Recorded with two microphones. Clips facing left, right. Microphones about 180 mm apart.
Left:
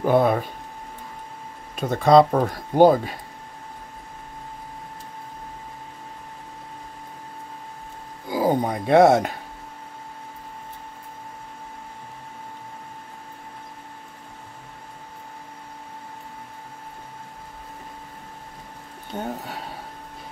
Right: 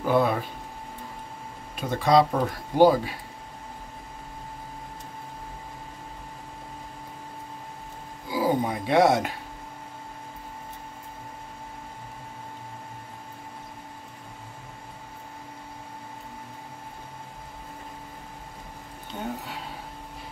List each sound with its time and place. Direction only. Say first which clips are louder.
0.0 s speech: left 4 dB; 50° left (ahead or behind)
1.8 s speech: left 5 dB; 50° left (ahead or behind)
8.3 s speech: left 3 dB; 50° left (ahead or behind)